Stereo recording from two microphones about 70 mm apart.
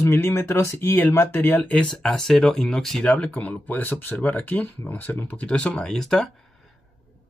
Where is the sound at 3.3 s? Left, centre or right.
Left; by 6.3 s centre.